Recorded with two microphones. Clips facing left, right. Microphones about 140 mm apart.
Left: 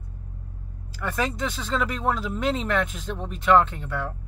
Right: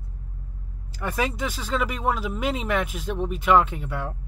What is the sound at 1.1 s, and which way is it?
Speech, 5° right (ahead or behind).